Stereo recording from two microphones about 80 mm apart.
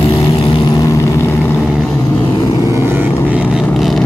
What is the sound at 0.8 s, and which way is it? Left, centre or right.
Vehicle, left.